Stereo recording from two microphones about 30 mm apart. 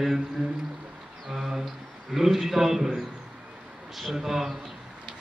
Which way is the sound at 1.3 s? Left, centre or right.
Centre.